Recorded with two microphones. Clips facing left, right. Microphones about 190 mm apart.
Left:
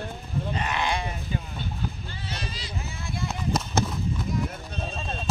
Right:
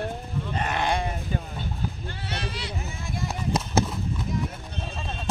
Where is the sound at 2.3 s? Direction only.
65° right (ahead or behind).